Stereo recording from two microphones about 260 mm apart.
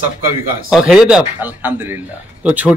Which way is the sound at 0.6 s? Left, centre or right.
Centre.